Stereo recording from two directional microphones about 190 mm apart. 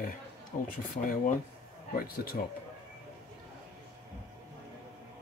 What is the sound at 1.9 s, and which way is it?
Speech, 50° left (ahead or behind).